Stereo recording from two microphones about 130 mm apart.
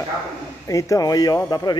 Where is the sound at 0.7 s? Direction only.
25° left (ahead or behind).